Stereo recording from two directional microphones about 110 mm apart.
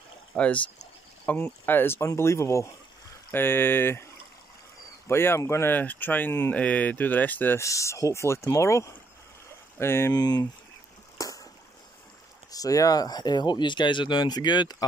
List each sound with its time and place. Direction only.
0.4 s speech: 15° left (ahead or behind)
5.0 s speech: 20° left (ahead or behind)
7.6 s speech: 30° left (ahead or behind)
10.1 s speech: 35° left (ahead or behind)
11.1 s a sound: 30° left (ahead or behind)
12.4 s speech: 35° left (ahead or behind)